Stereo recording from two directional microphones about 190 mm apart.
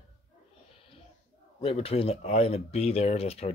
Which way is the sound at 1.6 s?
30° left (ahead or behind).